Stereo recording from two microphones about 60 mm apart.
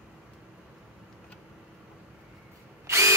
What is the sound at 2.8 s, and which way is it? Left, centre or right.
Drill, right.